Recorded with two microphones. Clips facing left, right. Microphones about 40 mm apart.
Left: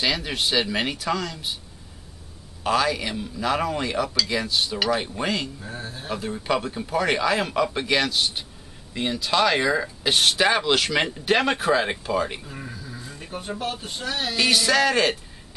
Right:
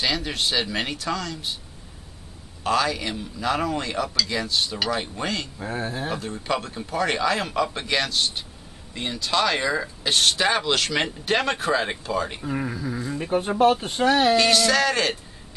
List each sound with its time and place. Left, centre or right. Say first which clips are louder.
0.0 s speech: even; centre
2.6 s speech: left 1 dB; centre
5.6 s speech: right 7 dB; right
6.1 s speech: left 7 dB; centre
12.4 s speech: right 10 dB; right
12.9 s speech: right 13 dB; right
14.3 s speech: right 2 dB; centre